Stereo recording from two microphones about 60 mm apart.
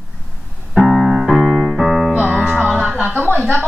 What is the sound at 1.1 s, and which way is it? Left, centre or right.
Piano, centre.